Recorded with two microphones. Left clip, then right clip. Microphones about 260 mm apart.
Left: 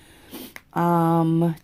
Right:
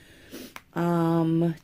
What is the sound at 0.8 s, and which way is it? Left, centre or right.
Mantra, left.